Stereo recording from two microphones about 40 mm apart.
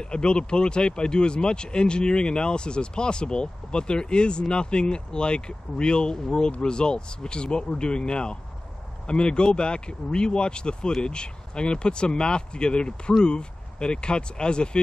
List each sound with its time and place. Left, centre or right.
0.0 s speech: left